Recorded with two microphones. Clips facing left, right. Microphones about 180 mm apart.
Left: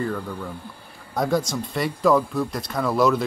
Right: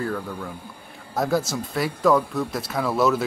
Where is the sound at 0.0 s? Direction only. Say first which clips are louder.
Left 1 dB; 5° right (ahead or behind).